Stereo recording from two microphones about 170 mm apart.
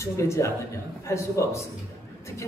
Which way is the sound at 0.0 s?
15° left (ahead or behind).